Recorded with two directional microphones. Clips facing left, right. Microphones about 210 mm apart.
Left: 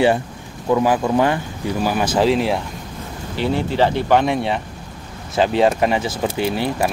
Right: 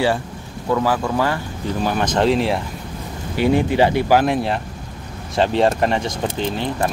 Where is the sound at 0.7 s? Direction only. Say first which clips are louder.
Left 3 dB; 15° left (ahead or behind).